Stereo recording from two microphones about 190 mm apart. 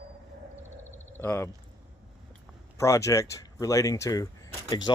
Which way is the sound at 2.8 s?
15° left (ahead or behind).